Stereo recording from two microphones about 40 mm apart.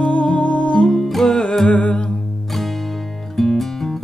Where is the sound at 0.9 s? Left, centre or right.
Centre.